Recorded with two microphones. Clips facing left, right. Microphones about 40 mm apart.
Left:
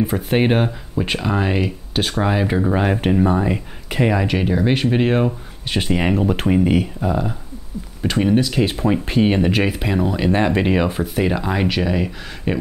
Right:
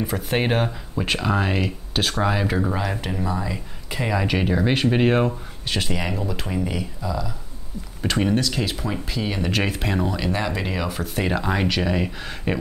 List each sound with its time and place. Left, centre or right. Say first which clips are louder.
0.3 s speech: left 4 dB; centre
2.8 s speech: left 9 dB; left
4.2 s speech: left 3 dB; centre
5.7 s speech: left 5 dB; centre
5.9 s speech: left 8 dB; left
8.0 s speech: left 4 dB; centre
8.6 s speech: left 8 dB; left
9.0 s speech: left 10 dB; left
9.5 s speech: left 4 dB; centre
10.3 s speech: left 8 dB; left
11.0 s speech: left 4 dB; centre